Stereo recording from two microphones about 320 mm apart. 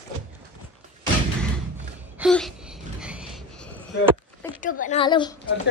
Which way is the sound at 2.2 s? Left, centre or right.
Centre.